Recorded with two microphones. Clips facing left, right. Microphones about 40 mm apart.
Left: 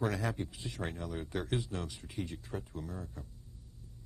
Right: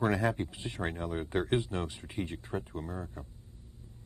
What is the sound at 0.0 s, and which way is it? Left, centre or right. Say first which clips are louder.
Speech: right 5 dB; right.